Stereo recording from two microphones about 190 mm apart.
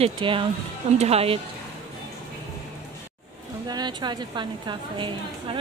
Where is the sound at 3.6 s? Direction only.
20° right (ahead or behind).